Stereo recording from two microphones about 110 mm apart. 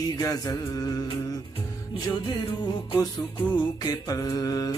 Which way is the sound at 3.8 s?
35° left (ahead or behind).